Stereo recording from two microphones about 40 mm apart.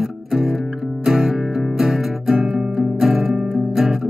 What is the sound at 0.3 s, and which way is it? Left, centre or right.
Music, centre.